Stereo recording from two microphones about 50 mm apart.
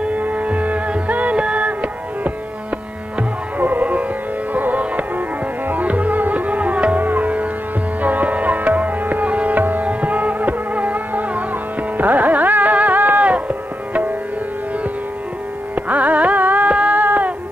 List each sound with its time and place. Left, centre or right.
0.0 s music: right
3.5 s music: right
5.7 s tabla: right
7.1 s sitar: right
8.0 s music: right
12.0 s carnatic music: right
15.7 s carnatic music: right